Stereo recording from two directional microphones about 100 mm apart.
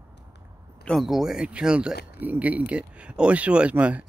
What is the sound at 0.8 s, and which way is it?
Speech, centre (ahead or behind).